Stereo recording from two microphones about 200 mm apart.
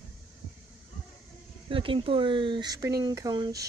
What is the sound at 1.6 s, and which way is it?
Speech, 25° right (ahead or behind).